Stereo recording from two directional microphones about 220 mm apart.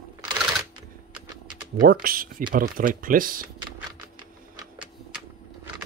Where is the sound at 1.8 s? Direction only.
40° right (ahead or behind).